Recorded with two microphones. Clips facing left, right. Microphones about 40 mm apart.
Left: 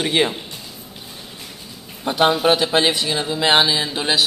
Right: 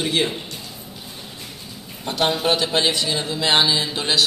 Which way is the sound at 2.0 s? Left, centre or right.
Centre.